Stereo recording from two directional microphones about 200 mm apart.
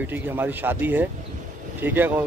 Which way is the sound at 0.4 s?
10° right (ahead or behind).